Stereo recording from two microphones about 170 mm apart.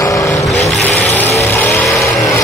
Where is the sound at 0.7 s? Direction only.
10° left (ahead or behind).